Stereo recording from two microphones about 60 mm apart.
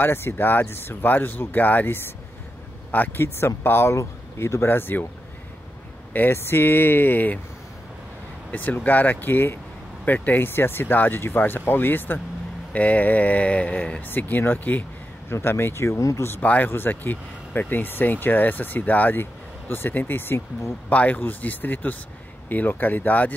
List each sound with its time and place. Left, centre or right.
0.0 s speech: left
3.2 s speech: left
3.9 s speech: left
6.1 s speech: left
8.5 s speech: left
12.7 s speech: left
14.0 s speech: left
15.2 s speech: left
16.4 s speech: left
20.9 s speech: left